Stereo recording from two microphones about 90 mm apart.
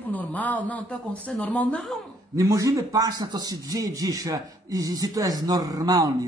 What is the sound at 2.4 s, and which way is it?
A man's voice, 35° right (ahead or behind).